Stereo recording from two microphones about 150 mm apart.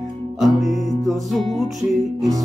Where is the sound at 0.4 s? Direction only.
Centre (ahead or behind).